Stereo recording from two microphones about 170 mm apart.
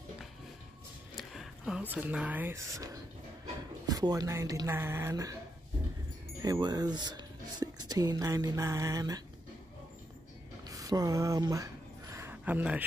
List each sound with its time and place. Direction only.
1.1 s speech: centre (ahead or behind); by 5.4 s 20° right (ahead or behind)
6.4 s speech: 25° right (ahead or behind)
10.6 s a sound: 20° right (ahead or behind)